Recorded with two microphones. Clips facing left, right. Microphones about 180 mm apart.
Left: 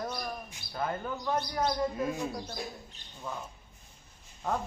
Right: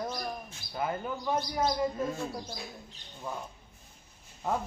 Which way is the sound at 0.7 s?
10° right (ahead or behind).